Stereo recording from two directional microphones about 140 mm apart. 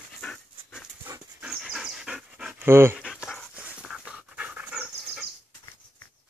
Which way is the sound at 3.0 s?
5° right (ahead or behind).